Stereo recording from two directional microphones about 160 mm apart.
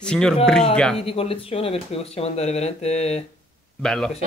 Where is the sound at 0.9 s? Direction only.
35° left (ahead or behind).